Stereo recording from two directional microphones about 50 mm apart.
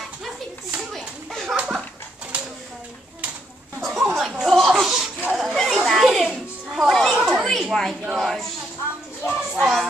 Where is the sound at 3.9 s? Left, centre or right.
Centre.